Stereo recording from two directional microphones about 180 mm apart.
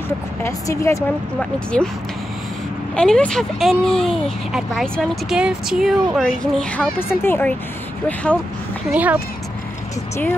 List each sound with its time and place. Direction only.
0.4 s a woman's voice: 15° left (ahead or behind)
3.0 s speech: 5° left (ahead or behind)
8.9 s speech: 10° right (ahead or behind)